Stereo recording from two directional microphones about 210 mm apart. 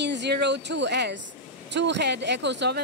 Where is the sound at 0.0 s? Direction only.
55° right (ahead or behind).